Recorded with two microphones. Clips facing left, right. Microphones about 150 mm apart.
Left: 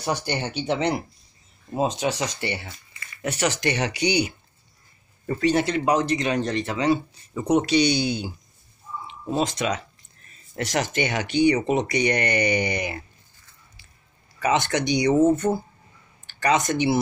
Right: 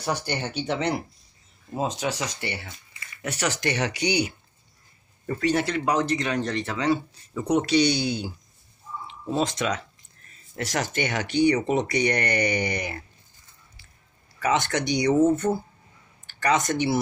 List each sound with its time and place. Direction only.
0.0 s speech: 20° left (ahead or behind)
5.2 s speech: 35° left (ahead or behind)
5.5 s speech: 20° left (ahead or behind)
9.4 s speech: 15° left (ahead or behind)
14.4 s speech: 20° left (ahead or behind)